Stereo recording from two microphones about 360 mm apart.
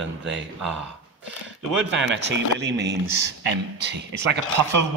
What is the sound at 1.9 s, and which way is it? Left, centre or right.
Speech, right.